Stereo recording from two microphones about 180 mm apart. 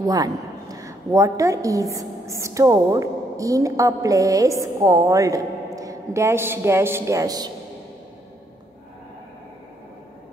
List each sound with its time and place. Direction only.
0.0 s a woman's voice: 20° right (ahead or behind)